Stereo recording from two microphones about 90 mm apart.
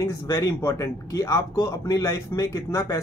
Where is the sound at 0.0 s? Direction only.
35° left (ahead or behind).